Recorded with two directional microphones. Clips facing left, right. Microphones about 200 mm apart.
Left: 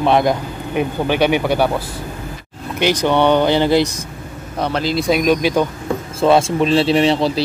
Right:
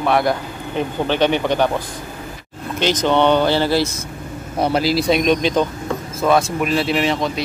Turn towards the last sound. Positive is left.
turn(degrees=30)  # may be behind; listen again after turning